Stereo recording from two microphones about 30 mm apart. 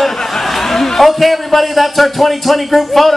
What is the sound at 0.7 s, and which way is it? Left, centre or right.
A man's voice, centre.